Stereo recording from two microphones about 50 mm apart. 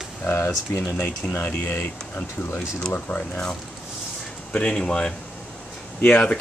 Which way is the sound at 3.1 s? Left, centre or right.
Left.